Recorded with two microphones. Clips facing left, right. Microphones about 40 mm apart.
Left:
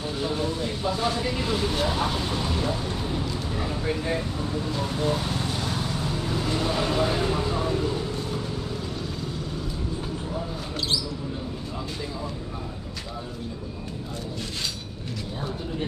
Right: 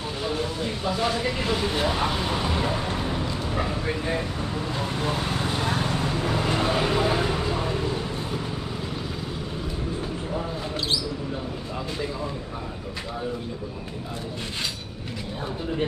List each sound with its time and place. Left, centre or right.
1.0 s speech: right
1.6 s speech: centre
3.4 s vehicle: right